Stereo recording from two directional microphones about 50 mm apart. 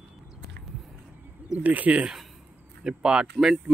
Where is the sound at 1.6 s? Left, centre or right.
Right.